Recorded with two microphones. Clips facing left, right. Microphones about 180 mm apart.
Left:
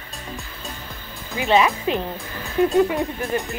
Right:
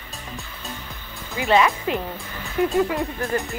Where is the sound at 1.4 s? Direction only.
20° left (ahead or behind).